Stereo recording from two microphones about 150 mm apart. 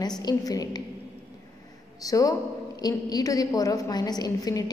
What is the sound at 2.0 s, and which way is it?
A woman's voice, 25° left (ahead or behind).